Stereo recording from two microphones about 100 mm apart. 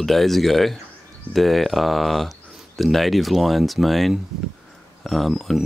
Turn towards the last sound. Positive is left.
turn(degrees=0)  # may be behind; listen again after turning